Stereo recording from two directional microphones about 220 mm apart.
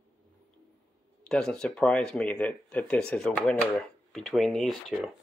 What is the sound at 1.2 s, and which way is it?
Speech, 5° left (ahead or behind).